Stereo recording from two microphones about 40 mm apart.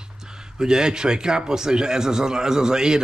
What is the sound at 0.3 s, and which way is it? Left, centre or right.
A man's voice, centre.